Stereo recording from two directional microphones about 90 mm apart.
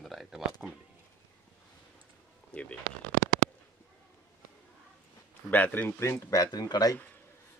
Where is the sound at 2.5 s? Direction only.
15° left (ahead or behind).